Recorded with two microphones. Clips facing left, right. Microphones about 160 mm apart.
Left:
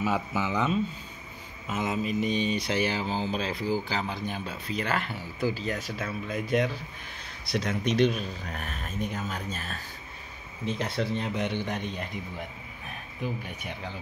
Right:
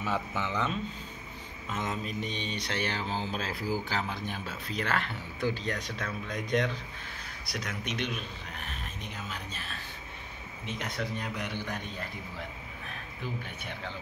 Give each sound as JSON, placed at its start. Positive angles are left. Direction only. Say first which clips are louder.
{"t": 0.0, "sound": "speech", "louder": "left 4 dB", "side_deg": 10}
{"t": 7.4, "sound": "speech", "louder": "left 9 dB", "side_deg": 30}
{"t": 10.6, "sound": "a man's voice", "louder": "left 6 dB", "side_deg": 30}